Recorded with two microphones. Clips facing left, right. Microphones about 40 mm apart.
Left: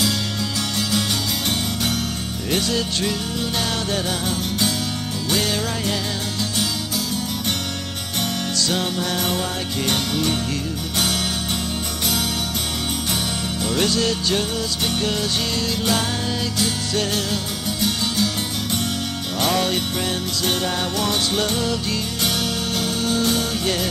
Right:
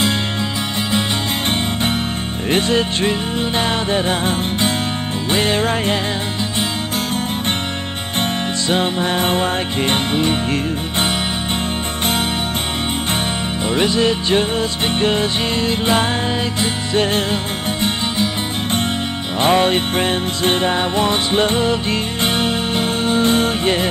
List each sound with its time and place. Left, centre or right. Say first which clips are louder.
2.5 s music: right 6 dB; right
8.2 s music: right 3 dB; right
13.7 s music: right 5 dB; right
19.4 s music: right 7 dB; right